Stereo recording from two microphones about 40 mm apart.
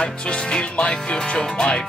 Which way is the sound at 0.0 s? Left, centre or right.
Left.